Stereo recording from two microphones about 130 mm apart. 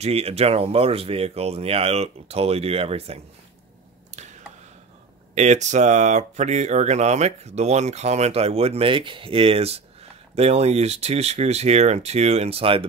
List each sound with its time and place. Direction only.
0.0 s speech: 50° right (ahead or behind)
5.3 s speech: 65° right (ahead or behind); by 12.8 s 45° right (ahead or behind)